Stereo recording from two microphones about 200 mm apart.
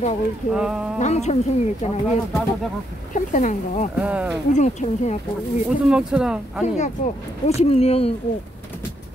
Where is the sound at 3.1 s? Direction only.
40° left (ahead or behind).